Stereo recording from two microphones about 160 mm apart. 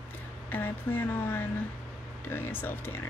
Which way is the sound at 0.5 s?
10° left (ahead or behind).